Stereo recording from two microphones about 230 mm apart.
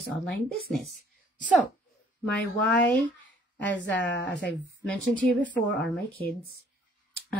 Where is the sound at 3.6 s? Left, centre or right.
Left.